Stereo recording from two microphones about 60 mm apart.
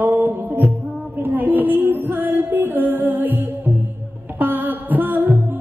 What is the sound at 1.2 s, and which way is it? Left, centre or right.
Music, right.